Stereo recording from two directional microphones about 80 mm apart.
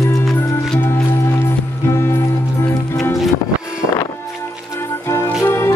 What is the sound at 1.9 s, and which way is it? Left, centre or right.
Music, left.